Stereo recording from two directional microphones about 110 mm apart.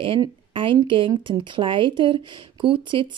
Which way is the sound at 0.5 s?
50° right (ahead or behind).